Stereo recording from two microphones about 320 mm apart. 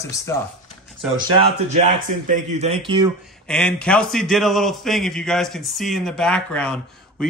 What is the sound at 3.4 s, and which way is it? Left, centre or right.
A man's voice, centre.